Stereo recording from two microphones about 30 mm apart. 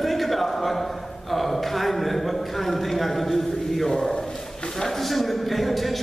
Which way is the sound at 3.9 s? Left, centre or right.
Centre.